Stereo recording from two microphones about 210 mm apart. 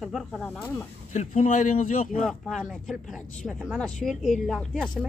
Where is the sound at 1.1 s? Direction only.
35° left (ahead or behind).